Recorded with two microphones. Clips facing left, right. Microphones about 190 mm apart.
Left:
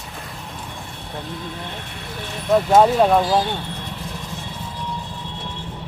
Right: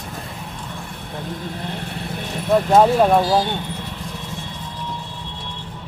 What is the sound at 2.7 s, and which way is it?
Speech, 5° right (ahead or behind).